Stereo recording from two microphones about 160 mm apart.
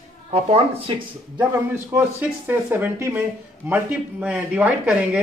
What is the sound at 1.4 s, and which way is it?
Speech, 10° right (ahead or behind).